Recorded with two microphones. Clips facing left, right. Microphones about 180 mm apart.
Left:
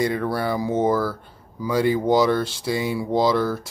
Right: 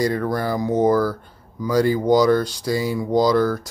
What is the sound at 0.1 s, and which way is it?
Speech, 5° left (ahead or behind).